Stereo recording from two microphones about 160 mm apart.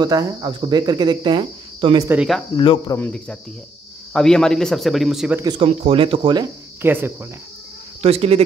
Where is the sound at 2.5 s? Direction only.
25° left (ahead or behind).